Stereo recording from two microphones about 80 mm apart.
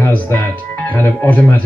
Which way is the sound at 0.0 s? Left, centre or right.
Left.